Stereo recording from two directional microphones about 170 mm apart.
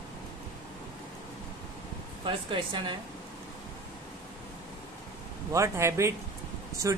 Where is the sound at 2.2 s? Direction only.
30° right (ahead or behind).